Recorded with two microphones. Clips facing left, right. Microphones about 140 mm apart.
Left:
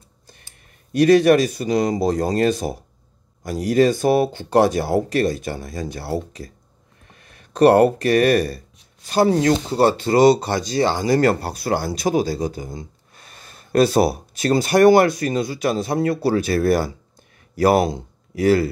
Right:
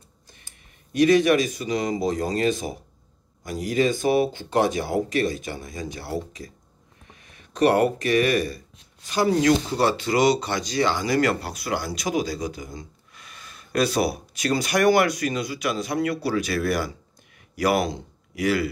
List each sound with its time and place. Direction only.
0.9 s speech: 35° left (ahead or behind)